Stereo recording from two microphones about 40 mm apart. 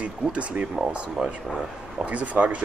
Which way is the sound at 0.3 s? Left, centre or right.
Right.